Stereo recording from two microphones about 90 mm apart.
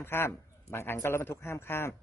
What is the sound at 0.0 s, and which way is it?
A man's voice, 25° left (ahead or behind).